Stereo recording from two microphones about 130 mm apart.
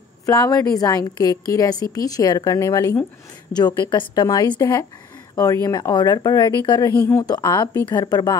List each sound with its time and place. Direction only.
0.3 s a woman's voice: 25° left (ahead or behind)